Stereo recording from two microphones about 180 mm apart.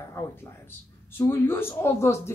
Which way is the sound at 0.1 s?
10° left (ahead or behind).